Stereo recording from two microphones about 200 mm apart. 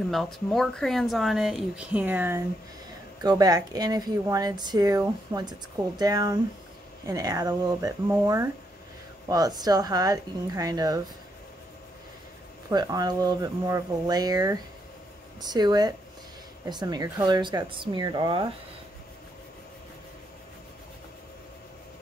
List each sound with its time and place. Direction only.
0.1 s speech: centre (ahead or behind); by 11.0 s 20° right (ahead or behind)
12.6 s speech: 20° right (ahead or behind)